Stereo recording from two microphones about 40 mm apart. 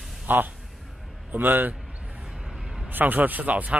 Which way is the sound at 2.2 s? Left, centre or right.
Centre.